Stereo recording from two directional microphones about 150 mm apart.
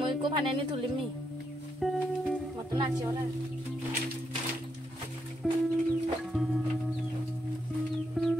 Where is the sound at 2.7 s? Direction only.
25° right (ahead or behind).